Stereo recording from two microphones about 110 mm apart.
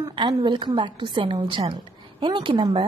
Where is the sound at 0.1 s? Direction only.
45° right (ahead or behind).